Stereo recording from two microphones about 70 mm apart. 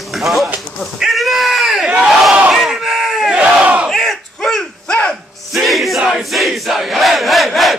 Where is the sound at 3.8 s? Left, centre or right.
Centre.